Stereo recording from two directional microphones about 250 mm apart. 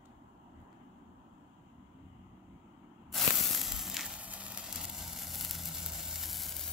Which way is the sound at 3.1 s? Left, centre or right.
Centre.